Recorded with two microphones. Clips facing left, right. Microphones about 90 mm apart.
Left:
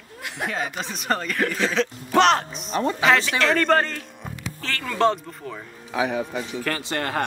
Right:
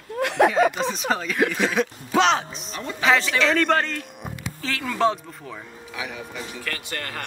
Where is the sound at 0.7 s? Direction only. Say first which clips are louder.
Right 2 dB; centre (ahead or behind).